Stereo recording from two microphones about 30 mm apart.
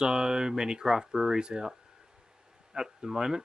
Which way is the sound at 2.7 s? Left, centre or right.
Centre.